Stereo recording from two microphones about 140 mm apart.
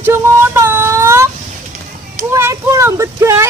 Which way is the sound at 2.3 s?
20° right (ahead or behind).